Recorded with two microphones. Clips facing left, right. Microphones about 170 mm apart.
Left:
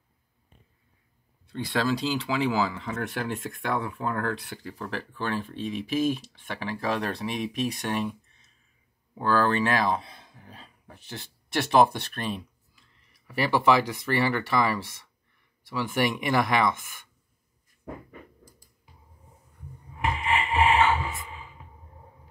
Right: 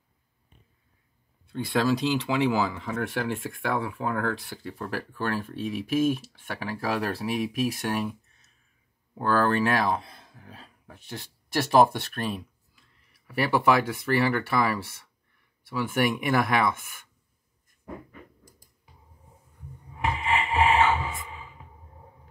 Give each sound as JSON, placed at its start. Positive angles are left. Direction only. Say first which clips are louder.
{"t": 1.5, "sound": "speech", "louder": "right 2 dB", "side_deg": -5}
{"t": 16.0, "sound": "speech", "louder": "right 1 dB", "side_deg": 0}
{"t": 20.2, "sound": "a sound", "louder": "even", "side_deg": -25}